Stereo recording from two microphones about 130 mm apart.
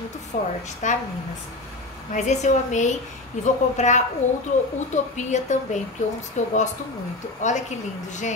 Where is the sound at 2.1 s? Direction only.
65° left (ahead or behind).